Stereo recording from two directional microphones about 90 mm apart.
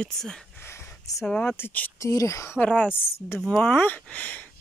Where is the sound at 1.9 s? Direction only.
40° left (ahead or behind).